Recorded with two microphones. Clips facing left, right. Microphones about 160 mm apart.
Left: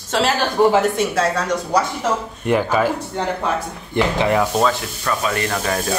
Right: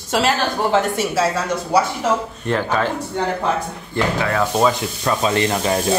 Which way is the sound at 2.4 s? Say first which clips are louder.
Left 3 dB; 10° left (ahead or behind).